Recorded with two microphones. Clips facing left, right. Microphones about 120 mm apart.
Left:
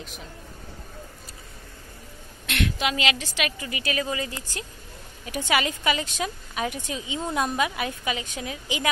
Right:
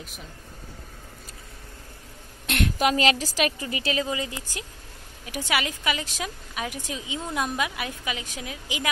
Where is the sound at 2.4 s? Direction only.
40° right (ahead or behind).